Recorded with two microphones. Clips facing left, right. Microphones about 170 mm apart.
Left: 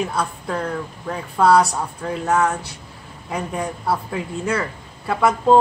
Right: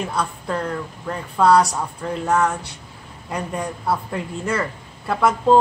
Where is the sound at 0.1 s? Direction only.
Centre (ahead or behind).